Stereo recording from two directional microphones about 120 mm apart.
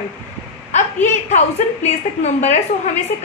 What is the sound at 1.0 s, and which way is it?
A woman's voice, 75° left (ahead or behind).